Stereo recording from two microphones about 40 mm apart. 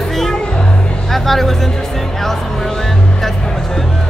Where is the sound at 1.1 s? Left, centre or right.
Centre.